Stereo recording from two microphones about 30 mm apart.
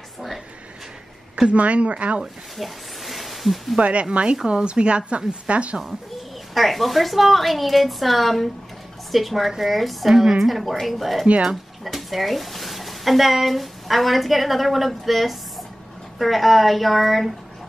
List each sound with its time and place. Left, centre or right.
1.5 s speech: right
2.5 s a sound: centre
3.8 s a woman's voice: right
6.5 s a woman's voice: centre
10.0 s a woman's voice: centre
10.4 s a woman's voice: centre